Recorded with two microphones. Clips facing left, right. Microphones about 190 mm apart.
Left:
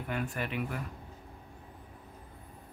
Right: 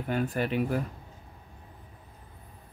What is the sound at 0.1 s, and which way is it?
Speech, 35° right (ahead or behind).